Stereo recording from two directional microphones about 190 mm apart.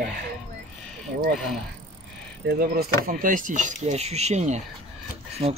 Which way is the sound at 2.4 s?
55° right (ahead or behind).